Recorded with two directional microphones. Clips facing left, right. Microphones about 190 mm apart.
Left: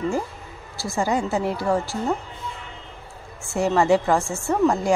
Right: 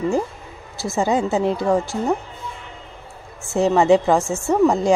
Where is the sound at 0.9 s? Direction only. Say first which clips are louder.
Right 4 dB; 20° right (ahead or behind).